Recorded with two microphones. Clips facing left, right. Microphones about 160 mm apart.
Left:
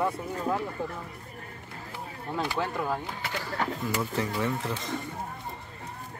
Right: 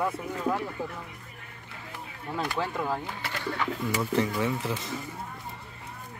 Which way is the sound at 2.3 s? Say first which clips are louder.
Even; centre (ahead or behind).